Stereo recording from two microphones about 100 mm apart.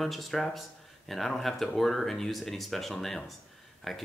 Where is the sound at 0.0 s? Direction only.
Centre (ahead or behind).